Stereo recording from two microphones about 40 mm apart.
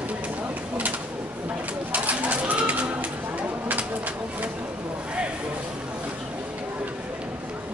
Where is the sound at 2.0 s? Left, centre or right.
Right.